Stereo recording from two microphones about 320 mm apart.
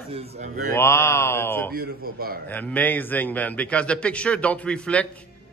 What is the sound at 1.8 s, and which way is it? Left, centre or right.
Speech, right.